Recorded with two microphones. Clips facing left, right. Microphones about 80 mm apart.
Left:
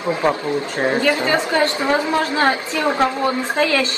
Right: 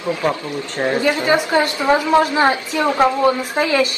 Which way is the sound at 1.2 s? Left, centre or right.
Centre.